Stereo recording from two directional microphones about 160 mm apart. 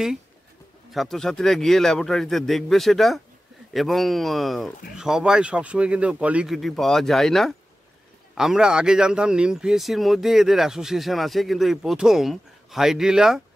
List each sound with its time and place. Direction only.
0.9 s a man's voice: centre (ahead or behind)